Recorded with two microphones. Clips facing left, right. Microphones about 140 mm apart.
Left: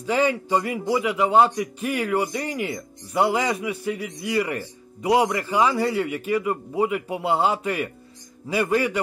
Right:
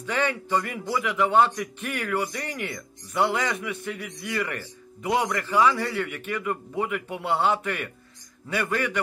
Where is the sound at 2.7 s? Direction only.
30° left (ahead or behind).